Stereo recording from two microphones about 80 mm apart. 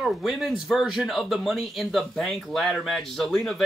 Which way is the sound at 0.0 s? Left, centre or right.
Centre.